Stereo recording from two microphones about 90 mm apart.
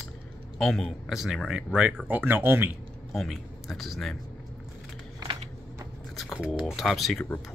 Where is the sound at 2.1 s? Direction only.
20° right (ahead or behind).